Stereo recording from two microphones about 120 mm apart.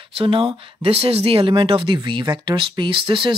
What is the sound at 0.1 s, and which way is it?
Speech, 50° right (ahead or behind).